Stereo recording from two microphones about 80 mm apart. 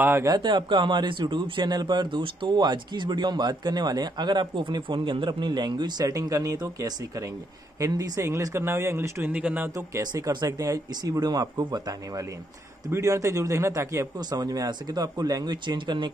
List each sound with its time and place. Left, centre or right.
0.4 s speech: right
6.0 s a man's voice: right
9.2 s speech: centre
10.1 s a man's voice: right
10.9 s a man's voice: right
14.3 s speech: right